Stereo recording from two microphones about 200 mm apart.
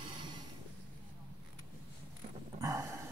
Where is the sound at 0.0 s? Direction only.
25° right (ahead or behind).